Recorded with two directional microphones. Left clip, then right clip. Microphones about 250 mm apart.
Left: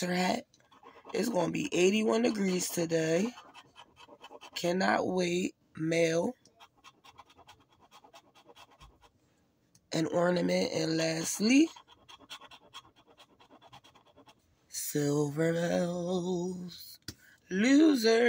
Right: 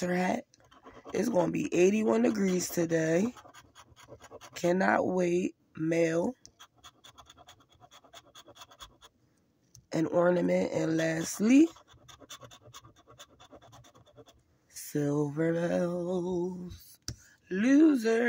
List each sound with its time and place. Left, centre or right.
0.0 s speech: centre
4.6 s speech: right
9.8 s speech: centre
14.8 s a sound: centre
17.5 s speech: centre